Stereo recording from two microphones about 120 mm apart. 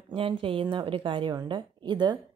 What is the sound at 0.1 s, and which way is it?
A woman's voice, 50° right (ahead or behind).